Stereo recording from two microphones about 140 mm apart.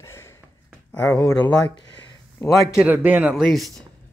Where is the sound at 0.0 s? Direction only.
20° left (ahead or behind).